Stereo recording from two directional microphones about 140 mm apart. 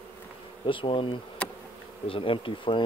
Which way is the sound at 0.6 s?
40° left (ahead or behind).